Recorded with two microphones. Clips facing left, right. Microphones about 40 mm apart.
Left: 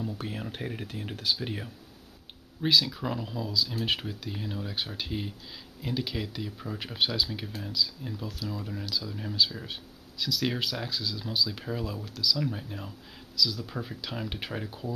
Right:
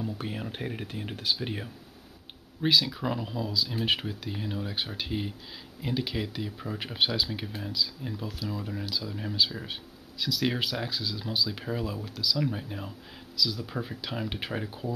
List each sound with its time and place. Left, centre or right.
0.0 s speech: centre